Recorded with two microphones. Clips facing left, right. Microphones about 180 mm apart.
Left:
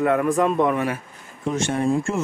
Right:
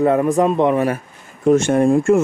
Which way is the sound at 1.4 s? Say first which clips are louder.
Right 9 dB; 50° right (ahead or behind).